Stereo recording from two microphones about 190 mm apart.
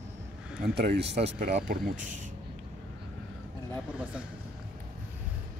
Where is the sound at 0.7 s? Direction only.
60° right (ahead or behind).